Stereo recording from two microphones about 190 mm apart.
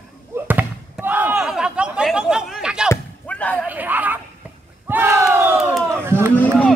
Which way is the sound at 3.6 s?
10° right (ahead or behind).